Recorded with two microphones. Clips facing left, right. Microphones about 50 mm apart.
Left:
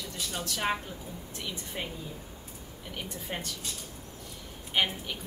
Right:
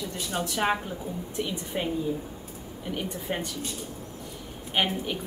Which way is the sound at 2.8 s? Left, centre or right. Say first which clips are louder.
Right 7 dB; centre.